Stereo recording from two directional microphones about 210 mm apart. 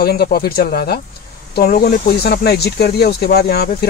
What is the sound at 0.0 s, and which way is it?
Speech, 50° left (ahead or behind).